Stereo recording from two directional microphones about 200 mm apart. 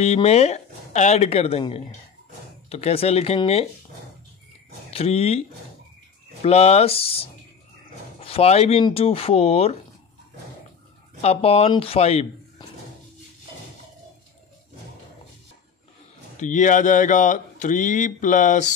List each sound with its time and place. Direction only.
0.0 s speech: 30° left (ahead or behind)
4.9 s speech: 30° left (ahead or behind)
6.4 s speech: 30° left (ahead or behind)
11.1 s speech: 30° left (ahead or behind)
16.3 s speech: 40° left (ahead or behind)